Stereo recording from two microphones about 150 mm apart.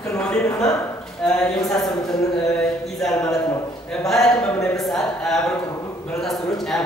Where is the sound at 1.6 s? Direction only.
Centre (ahead or behind).